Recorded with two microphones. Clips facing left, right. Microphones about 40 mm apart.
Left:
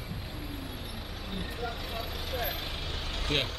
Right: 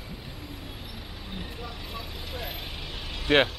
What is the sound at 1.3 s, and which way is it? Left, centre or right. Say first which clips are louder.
Vehicle: left 2 dB; centre.